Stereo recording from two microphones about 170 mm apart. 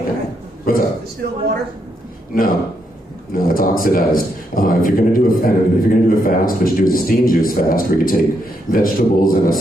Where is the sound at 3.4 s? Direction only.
55° left (ahead or behind).